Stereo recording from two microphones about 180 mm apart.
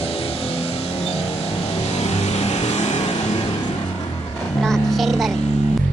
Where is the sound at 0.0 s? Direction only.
35° left (ahead or behind).